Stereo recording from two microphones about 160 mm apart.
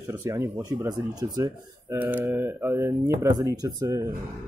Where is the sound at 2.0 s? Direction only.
10° right (ahead or behind).